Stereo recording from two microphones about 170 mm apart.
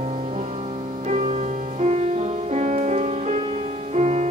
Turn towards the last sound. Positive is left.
turn(degrees=-40)  # may be behind; listen again after turning